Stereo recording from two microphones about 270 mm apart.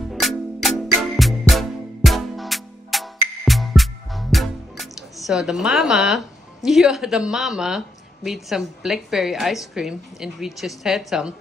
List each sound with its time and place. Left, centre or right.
0.1 s music: centre